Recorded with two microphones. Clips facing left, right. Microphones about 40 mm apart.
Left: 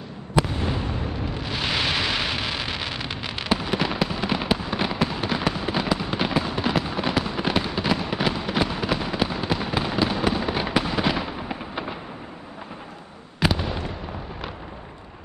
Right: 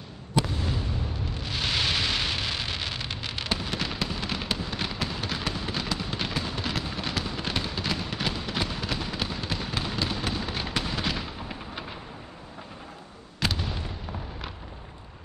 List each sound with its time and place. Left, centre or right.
0.5 s fireworks: left
1.3 s a sound: centre
13.4 s fireworks: centre